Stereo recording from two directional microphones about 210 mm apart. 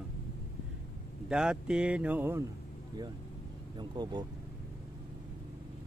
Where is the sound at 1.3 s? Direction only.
5° right (ahead or behind).